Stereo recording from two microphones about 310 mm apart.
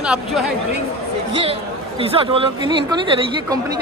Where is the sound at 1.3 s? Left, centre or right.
Centre.